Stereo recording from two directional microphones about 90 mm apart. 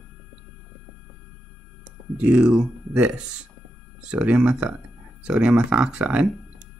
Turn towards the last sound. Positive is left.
turn(degrees=-10)  # may be behind; listen again after turning